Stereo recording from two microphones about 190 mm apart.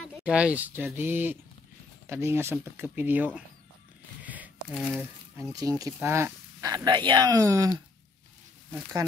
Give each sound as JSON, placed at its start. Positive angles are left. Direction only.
{"t": 0.0, "sound": "speech", "side_deg": -5}
{"t": 4.2, "sound": "a sound", "side_deg": -10}
{"t": 5.5, "sound": "speech", "side_deg": -20}